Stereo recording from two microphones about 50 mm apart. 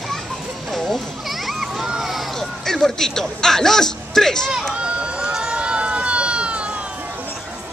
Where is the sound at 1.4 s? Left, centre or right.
Centre.